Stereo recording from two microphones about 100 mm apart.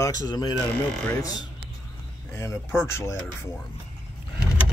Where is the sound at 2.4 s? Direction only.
25° left (ahead or behind).